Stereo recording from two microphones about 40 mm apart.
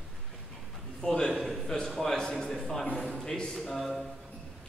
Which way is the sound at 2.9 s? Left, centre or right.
Centre.